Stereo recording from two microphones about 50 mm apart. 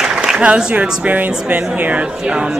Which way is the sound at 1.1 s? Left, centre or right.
Right.